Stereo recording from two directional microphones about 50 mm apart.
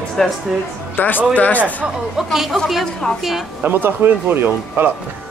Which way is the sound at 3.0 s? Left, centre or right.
Centre.